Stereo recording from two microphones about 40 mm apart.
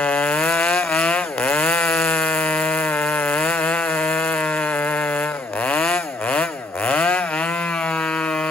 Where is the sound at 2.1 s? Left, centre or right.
Left.